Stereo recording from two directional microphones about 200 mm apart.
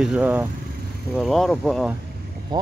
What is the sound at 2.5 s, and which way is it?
Speech, 20° right (ahead or behind).